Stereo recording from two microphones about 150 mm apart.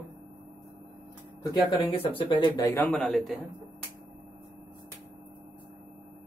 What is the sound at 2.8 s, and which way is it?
Speech, 5° left (ahead or behind).